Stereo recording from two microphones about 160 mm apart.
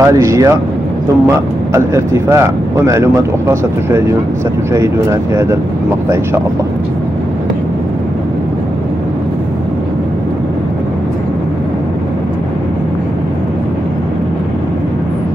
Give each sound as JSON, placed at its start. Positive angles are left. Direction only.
{"t": 0.0, "sound": "speech", "side_deg": -20}